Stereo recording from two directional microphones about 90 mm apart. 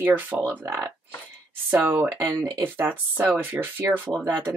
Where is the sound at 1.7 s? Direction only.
25° right (ahead or behind).